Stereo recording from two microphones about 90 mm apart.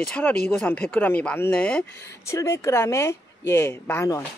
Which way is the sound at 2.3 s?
30° left (ahead or behind).